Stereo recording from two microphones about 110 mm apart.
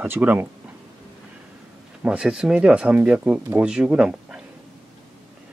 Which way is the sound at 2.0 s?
5° right (ahead or behind).